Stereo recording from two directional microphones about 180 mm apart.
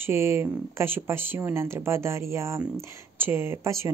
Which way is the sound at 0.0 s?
15° right (ahead or behind).